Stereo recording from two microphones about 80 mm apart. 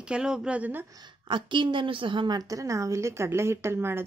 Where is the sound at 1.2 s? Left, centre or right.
Right.